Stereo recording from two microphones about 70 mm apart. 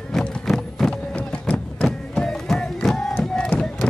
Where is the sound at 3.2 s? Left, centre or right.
Centre.